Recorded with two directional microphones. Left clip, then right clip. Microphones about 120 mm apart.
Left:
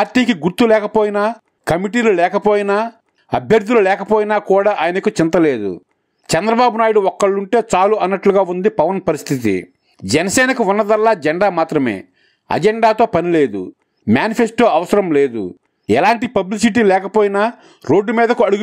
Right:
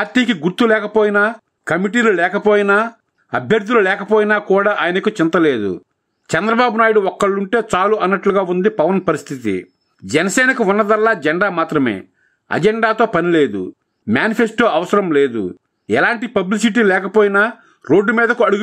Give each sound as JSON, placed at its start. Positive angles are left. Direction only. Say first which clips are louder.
{"t": 0.0, "sound": "a man's voice", "louder": "left 1 dB", "side_deg": 30}